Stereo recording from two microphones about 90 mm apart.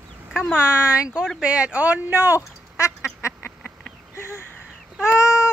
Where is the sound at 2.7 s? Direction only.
35° left (ahead or behind).